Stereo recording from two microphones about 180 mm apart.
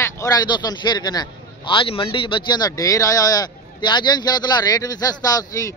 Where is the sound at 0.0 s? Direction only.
20° left (ahead or behind).